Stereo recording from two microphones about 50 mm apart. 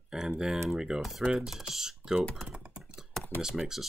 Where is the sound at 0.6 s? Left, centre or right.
Centre.